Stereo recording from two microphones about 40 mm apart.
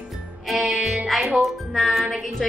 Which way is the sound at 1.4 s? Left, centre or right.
Centre.